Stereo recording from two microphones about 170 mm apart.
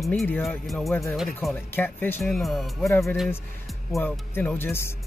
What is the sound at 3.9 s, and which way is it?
Speech, 5° left (ahead or behind).